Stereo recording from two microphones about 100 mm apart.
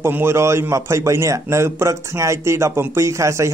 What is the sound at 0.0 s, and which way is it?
A man's voice, 25° right (ahead or behind).